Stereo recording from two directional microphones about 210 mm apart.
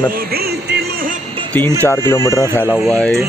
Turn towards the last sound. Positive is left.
turn(degrees=5)  # may be behind; listen again after turning